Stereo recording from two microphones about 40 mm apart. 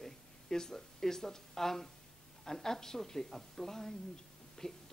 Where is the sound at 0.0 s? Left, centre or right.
Centre.